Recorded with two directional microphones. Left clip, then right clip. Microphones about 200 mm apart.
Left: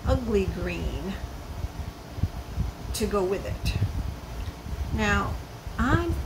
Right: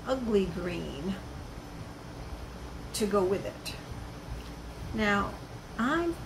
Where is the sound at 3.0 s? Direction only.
5° left (ahead or behind).